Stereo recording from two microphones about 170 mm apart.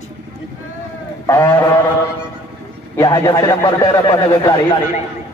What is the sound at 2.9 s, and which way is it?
Speech, 20° left (ahead or behind).